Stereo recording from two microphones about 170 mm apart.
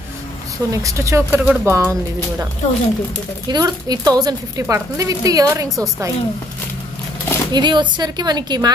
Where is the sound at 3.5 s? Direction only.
20° right (ahead or behind).